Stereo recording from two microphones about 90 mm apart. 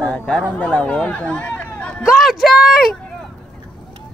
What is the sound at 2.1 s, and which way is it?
Speech, centre (ahead or behind).